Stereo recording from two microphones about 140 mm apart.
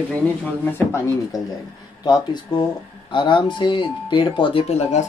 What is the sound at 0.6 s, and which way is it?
Speech, 15° left (ahead or behind).